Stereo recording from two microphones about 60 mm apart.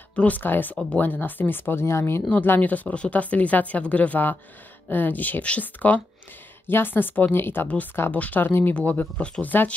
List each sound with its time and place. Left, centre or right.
0.1 s speech: left
2.4 s speech: left
6.7 s speech: left
7.6 s speech: left
8.7 s speech: left